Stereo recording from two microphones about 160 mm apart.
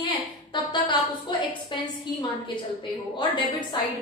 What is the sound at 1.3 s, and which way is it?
Speech, 30° left (ahead or behind).